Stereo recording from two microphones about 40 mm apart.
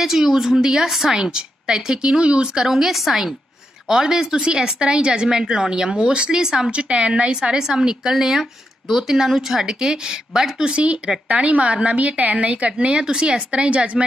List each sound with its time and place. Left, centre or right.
0.0 s speech: centre
1.2 s speech: centre
3.9 s speech: centre
6.3 s speech: centre
6.7 s speech: right; by 9.8 s centre
9.8 s a woman's voice: right